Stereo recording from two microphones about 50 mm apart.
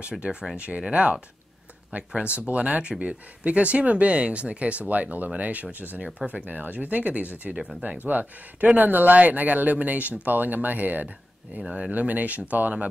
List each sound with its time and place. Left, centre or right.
0.2 s speech: centre; by 11.1 s right
11.6 s speech: centre
11.9 s speech: right